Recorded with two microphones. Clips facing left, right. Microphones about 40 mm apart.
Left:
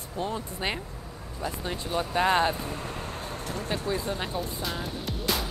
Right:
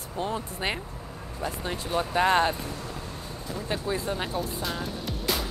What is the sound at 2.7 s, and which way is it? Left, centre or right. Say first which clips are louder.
Vehicle: left 2 dB; left.